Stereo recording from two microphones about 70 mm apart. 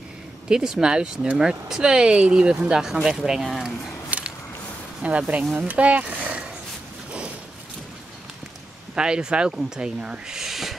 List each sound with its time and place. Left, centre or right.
0.5 s speech: centre
4.1 s a sound: right
5.0 s speech: right
8.9 s speech: centre